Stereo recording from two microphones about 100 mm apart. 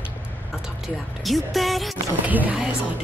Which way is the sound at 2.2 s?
15° right (ahead or behind).